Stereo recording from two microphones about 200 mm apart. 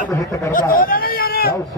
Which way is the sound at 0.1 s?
15° left (ahead or behind).